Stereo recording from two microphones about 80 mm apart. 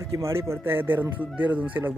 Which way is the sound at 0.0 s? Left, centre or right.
Right.